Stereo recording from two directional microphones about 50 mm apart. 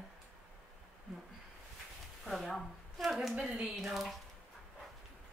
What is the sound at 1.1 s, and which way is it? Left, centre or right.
Speech, centre.